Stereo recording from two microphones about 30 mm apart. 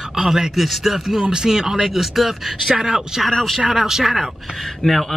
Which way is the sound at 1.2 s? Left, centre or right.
Right.